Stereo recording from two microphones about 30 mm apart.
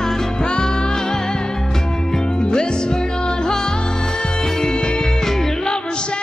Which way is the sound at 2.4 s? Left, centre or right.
Left.